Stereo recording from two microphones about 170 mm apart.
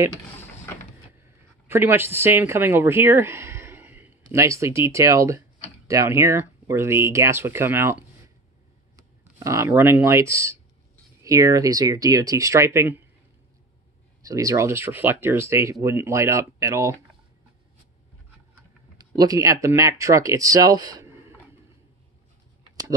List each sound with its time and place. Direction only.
0.1 s mechanisms: 10° left (ahead or behind)
1.2 s speech: 15° right (ahead or behind)
9.4 s speech: 15° right (ahead or behind)
14.2 s speech: 20° right (ahead or behind)
18.5 s speech: 20° right (ahead or behind)